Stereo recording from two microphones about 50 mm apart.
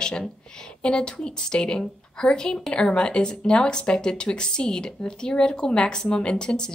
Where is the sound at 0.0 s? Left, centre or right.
Centre.